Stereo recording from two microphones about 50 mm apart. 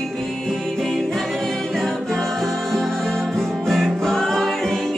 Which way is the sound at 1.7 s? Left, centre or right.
Centre.